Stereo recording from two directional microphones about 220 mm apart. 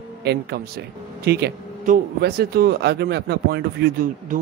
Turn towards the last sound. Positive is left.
turn(degrees=-40)  # may be behind; listen again after turning